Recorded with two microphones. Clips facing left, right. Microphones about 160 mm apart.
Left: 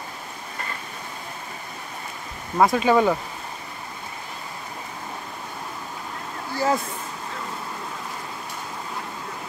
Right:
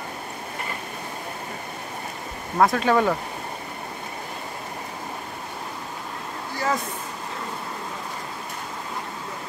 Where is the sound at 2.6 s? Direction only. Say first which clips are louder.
Left 1 dB; 5° left (ahead or behind).